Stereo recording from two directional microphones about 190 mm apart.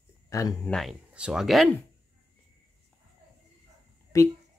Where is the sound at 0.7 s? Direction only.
Centre (ahead or behind).